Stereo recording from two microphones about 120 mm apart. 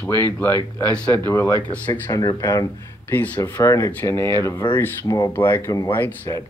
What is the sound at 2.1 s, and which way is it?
Speech, 30° left (ahead or behind).